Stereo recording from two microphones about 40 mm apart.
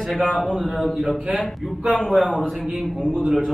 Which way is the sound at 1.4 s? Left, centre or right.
Centre.